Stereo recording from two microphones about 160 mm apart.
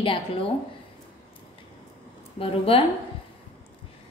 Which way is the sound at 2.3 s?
35° left (ahead or behind).